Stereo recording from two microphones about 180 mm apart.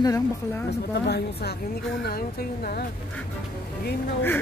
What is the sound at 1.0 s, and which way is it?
A woman's voice, 65° left (ahead or behind).